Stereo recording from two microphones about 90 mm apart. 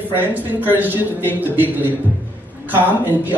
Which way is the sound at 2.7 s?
20° right (ahead or behind).